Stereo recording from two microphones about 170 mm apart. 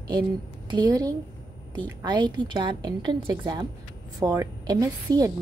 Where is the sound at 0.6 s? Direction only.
25° right (ahead or behind).